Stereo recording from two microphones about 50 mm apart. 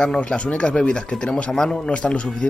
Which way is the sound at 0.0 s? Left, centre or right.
Centre.